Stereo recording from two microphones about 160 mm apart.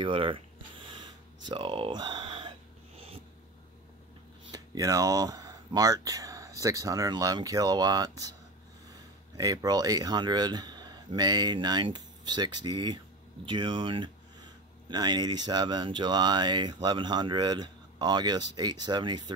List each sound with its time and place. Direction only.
0.0 s a sound: 30° right (ahead or behind)
4.5 s speech: 20° right (ahead or behind)
9.4 s speech: 25° right (ahead or behind)